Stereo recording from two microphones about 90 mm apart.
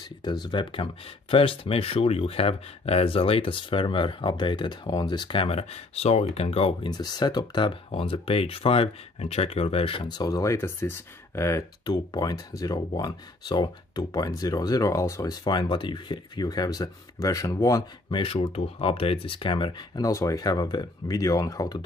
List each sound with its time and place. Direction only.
0.2 s speech: 55° left (ahead or behind); by 0.8 s 70° left (ahead or behind)
1.3 s speech: 80° left; by 5.4 s 55° left (ahead or behind)
5.4 s speech: 90° left
6.9 s speech: 50° left (ahead or behind); by 10.0 s 90° left
10.1 s speech: 45° left (ahead or behind)
11.8 s speech: 50° left (ahead or behind)
15.4 s speech: 55° left (ahead or behind)
18.1 s speech: 90° left; by 19.7 s 75° left (ahead or behind)
20.0 s speech: 35° left (ahead or behind)